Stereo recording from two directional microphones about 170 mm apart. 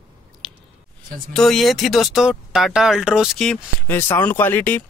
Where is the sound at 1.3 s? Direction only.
Centre (ahead or behind).